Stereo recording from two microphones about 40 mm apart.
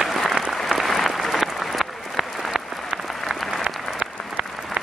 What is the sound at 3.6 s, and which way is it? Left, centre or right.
Applause, right.